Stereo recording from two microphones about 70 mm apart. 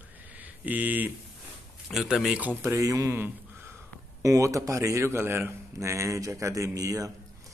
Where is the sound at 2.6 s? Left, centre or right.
Right.